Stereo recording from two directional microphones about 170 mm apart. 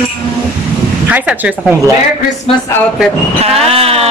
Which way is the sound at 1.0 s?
5° right (ahead or behind).